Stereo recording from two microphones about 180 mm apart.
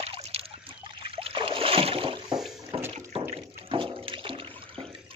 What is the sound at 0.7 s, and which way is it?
Boat, 30° right (ahead or behind).